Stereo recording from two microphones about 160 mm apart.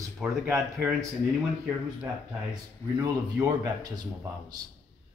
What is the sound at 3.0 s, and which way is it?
Speech, 25° right (ahead or behind).